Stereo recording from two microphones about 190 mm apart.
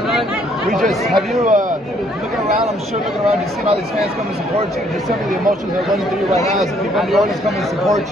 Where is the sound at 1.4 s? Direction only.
45° right (ahead or behind).